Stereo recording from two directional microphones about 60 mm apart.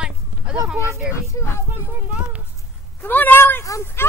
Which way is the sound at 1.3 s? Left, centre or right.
Left.